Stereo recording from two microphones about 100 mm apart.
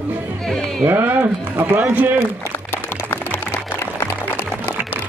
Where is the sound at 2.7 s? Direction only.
25° left (ahead or behind).